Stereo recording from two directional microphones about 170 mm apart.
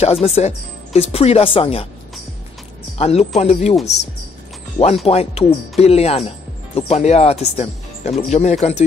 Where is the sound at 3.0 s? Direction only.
40° left (ahead or behind).